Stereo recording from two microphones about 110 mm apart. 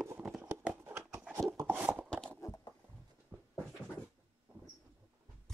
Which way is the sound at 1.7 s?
10° right (ahead or behind).